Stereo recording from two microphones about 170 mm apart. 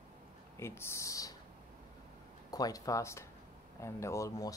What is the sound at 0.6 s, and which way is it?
Speech, 15° left (ahead or behind).